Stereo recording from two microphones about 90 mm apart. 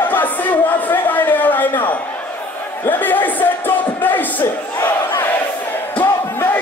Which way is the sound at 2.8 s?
20° left (ahead or behind).